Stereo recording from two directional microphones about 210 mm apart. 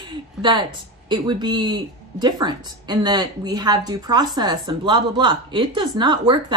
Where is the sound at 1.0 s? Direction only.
20° right (ahead or behind).